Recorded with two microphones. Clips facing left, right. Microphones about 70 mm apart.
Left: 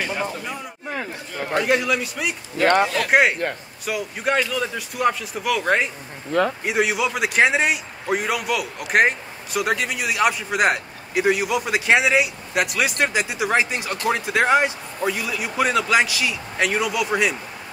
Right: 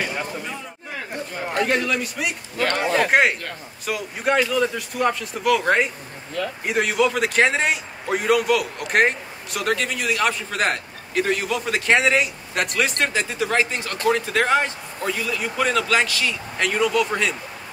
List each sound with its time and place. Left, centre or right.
1.6 s a man's voice: centre
2.5 s a man's voice: left
3.1 s a man's voice: centre